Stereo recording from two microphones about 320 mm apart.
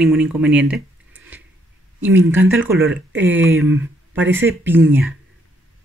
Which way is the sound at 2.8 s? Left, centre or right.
Right.